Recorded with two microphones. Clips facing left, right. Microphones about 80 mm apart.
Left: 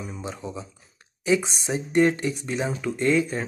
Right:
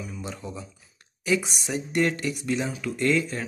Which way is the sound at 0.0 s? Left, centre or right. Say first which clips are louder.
Left 2 dB; left.